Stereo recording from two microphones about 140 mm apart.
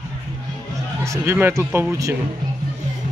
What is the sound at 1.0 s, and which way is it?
Speech, 20° right (ahead or behind).